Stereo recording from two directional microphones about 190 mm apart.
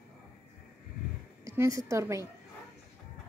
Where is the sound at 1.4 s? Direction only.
15° right (ahead or behind).